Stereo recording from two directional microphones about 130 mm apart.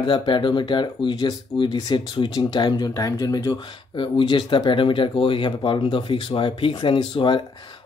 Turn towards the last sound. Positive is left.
turn(degrees=40)  # may be behind; listen again after turning